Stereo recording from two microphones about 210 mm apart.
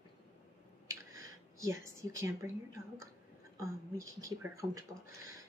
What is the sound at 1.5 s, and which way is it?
Speech, 15° right (ahead or behind).